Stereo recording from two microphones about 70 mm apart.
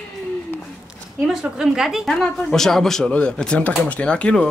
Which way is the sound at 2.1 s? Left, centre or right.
Centre.